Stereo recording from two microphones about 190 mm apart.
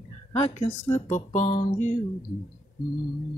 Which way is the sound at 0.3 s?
35° left (ahead or behind).